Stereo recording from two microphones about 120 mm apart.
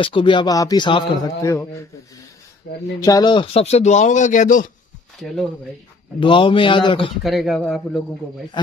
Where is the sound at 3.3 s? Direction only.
50° left (ahead or behind); by 4.6 s 90° left.